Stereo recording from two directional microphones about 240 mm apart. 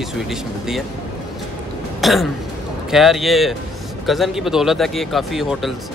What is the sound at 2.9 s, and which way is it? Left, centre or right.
Speech, centre.